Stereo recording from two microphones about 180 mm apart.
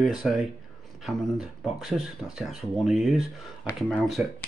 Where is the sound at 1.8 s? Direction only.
Centre (ahead or behind).